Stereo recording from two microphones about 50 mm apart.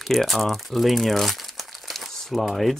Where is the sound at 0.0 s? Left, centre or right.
Centre.